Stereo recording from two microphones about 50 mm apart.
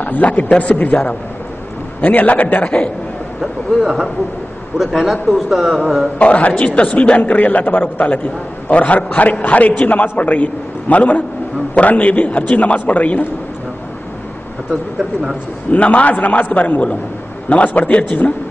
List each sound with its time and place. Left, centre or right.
0.0 s a man's voice: left
2.0 s a man's voice: left
3.3 s a man's voice: centre
6.1 s a man's voice: left
15.7 s a man's voice: left